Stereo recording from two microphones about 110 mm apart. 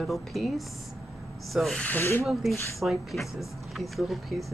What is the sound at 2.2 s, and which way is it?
Speech, centre (ahead or behind).